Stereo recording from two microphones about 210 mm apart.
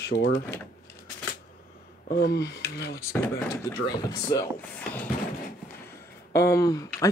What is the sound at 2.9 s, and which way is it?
Speech, 15° left (ahead or behind).